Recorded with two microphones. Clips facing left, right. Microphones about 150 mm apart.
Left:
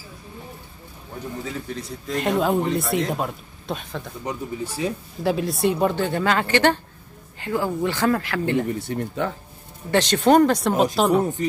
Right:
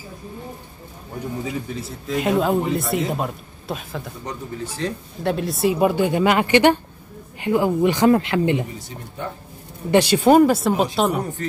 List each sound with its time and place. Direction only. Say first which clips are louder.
1.4 s speech: right 3 dB; 10° right (ahead or behind)
4.2 s speech: left 5 dB; 10° left (ahead or behind); by 8.6 s 20° right (ahead or behind)
8.7 s speech: left 8 dB; 75° left (ahead or behind)
9.8 s speech: right 3 dB; 10° right (ahead or behind)